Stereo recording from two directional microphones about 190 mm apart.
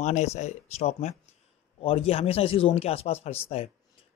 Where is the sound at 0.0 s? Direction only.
35° left (ahead or behind).